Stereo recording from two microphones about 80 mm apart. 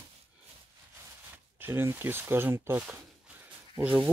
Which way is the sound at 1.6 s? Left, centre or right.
Right.